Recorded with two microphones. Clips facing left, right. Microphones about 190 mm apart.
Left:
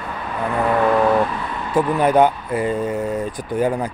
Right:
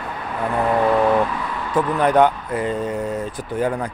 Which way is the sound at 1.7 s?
10° left (ahead or behind).